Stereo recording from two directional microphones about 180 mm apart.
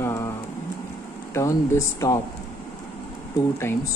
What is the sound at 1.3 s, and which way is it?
Speech, 15° left (ahead or behind).